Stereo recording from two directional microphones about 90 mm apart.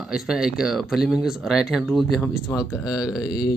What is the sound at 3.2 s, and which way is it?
Speech, 50° left (ahead or behind).